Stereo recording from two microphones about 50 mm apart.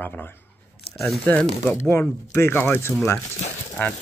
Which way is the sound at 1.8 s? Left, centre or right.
Left.